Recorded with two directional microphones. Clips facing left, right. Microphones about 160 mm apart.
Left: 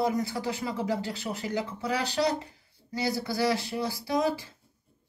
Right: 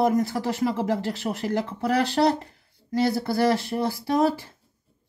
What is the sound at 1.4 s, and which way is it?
Speech, 60° right (ahead or behind).